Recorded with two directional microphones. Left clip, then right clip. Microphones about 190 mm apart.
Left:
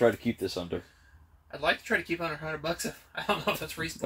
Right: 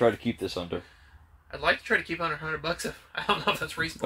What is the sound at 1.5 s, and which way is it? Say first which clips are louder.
Speech: right 3 dB; 20° left (ahead or behind).